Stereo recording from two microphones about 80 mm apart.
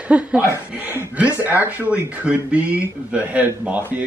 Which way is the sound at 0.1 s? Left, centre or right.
Centre.